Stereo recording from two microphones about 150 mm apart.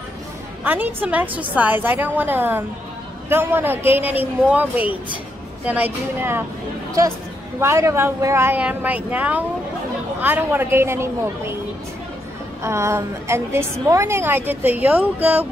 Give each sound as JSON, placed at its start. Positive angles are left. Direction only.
{"t": 0.7, "sound": "a woman's voice", "side_deg": -10}
{"t": 7.6, "sound": "a woman's voice", "side_deg": -15}
{"t": 12.6, "sound": "a woman's voice", "side_deg": -20}